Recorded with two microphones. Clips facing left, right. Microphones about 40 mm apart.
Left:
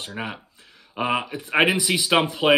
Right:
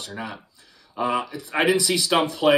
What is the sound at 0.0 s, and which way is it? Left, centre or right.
Speech, left.